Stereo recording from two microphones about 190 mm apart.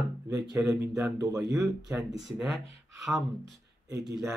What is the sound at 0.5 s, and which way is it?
Speech, 15° right (ahead or behind).